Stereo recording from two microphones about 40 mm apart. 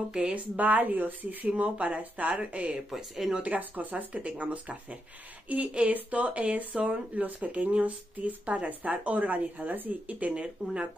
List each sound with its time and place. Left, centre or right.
0.3 s speech: right
1.5 s speech: right
2.9 s speech: centre
3.4 s speech: right
4.1 s speech: right
10.3 s speech: right